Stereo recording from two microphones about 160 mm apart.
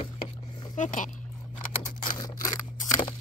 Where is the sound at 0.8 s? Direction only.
50° left (ahead or behind).